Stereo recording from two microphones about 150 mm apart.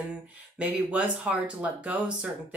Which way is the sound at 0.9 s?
10° right (ahead or behind).